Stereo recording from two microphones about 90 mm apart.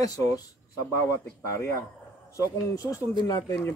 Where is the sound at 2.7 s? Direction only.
40° left (ahead or behind).